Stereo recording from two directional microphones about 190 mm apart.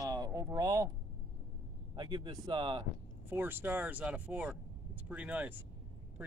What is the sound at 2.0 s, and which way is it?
Speech, 25° right (ahead or behind).